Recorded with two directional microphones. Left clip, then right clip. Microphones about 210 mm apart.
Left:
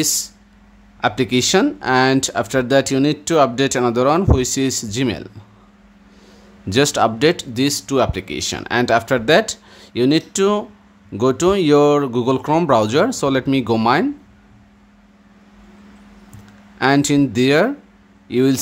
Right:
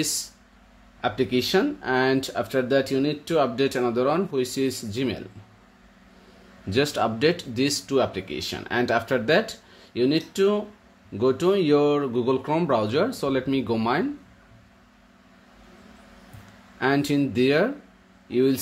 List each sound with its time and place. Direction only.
0.0 s speech: 20° left (ahead or behind)
6.7 s speech: 25° left (ahead or behind)
16.7 s speech: 20° left (ahead or behind)